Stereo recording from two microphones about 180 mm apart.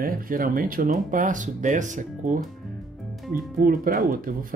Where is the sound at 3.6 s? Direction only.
50° right (ahead or behind).